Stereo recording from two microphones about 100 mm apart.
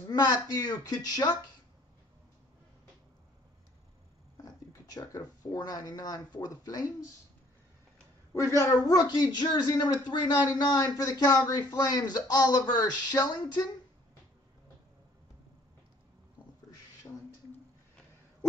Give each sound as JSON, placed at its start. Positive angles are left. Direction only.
{"t": 0.1, "sound": "a woman's voice", "side_deg": 40}
{"t": 4.4, "sound": "speech", "side_deg": 40}
{"t": 8.3, "sound": "a woman's voice", "side_deg": 30}